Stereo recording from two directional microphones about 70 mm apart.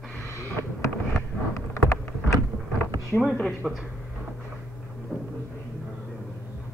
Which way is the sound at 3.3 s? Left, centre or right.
Centre.